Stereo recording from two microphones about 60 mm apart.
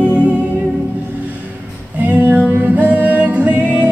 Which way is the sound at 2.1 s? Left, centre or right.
Right.